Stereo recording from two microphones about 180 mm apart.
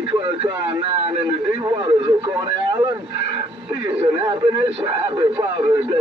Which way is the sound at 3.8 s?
25° right (ahead or behind).